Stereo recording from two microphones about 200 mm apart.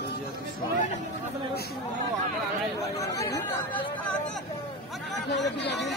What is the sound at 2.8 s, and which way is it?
Chatter, 15° left (ahead or behind).